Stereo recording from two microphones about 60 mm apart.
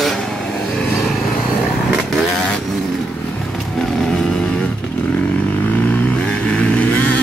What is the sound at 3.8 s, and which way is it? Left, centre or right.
Vehicle, centre.